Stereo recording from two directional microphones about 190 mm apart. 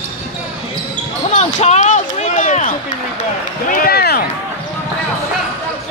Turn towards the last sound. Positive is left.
turn(degrees=55)  # may be behind; listen again after turning